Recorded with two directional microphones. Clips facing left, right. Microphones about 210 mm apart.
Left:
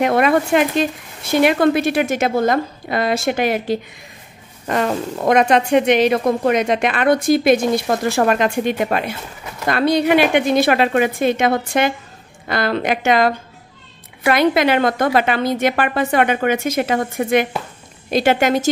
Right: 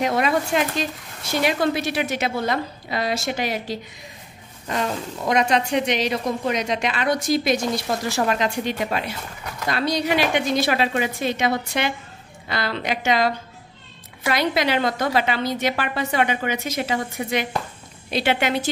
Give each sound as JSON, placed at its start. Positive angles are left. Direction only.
{"t": 0.0, "sound": "a woman's voice", "side_deg": 55}